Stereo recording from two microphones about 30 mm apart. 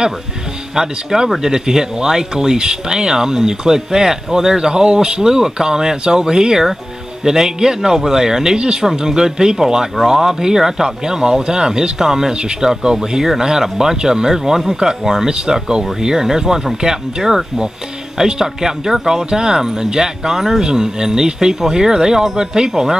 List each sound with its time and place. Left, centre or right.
0.7 s speech: centre
11.3 s speech: right
15.2 s speech: right